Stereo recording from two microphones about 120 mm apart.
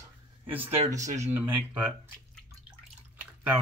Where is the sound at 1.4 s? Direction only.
15° right (ahead or behind).